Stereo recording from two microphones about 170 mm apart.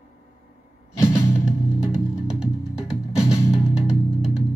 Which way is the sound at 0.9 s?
15° left (ahead or behind).